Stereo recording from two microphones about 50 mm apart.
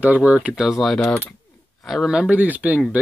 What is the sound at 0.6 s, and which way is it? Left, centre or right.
Speech, centre.